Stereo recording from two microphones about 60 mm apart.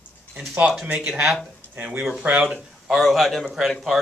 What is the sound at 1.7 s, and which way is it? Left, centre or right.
Speech, right.